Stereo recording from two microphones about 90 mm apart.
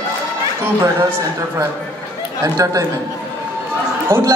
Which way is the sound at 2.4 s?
40° right (ahead or behind).